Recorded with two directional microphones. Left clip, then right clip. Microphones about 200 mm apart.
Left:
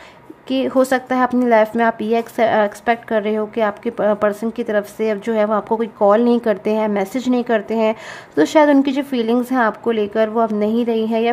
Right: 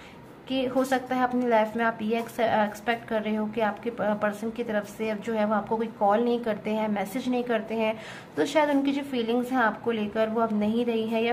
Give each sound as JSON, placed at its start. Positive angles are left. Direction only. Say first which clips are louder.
{"t": 0.5, "sound": "speech", "louder": "left 10 dB", "side_deg": 45}